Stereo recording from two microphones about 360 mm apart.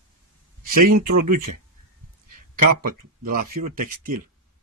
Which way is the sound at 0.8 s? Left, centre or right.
Right.